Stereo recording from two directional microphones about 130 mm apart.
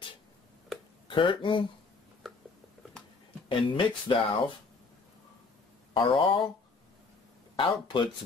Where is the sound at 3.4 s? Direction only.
40° left (ahead or behind).